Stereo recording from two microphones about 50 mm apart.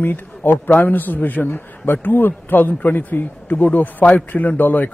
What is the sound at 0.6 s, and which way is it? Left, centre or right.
A man's voice, left.